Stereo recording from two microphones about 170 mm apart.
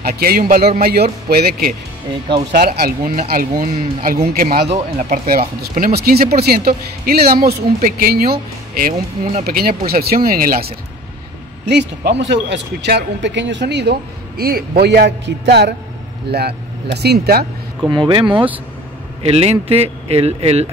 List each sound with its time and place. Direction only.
0.0 s speech: 65° right (ahead or behind)
4.6 s speech: 45° right (ahead or behind)
5.6 s speech: 65° right (ahead or behind)
11.6 s speech: 85° right
17.8 s speech: 25° right (ahead or behind)
19.2 s speech: 35° right (ahead or behind)